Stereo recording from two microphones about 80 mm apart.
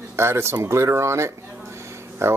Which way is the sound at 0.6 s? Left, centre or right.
Right.